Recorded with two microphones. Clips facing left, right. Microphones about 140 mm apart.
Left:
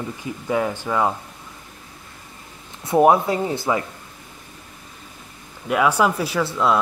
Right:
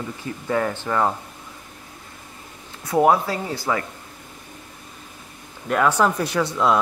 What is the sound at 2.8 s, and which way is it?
Speech, 25° left (ahead or behind).